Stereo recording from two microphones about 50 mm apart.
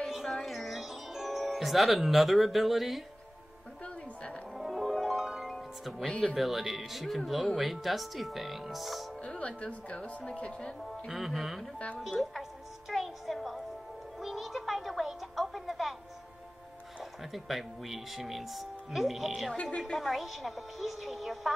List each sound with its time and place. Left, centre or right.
0.0 s music: centre
4.6 s music: centre
5.5 s music: centre
6.3 s speech: centre
9.2 s speech: left
11.1 s speech: centre
12.9 s music: centre
17.2 s speech: centre
19.5 s speech: centre
19.9 s speech: centre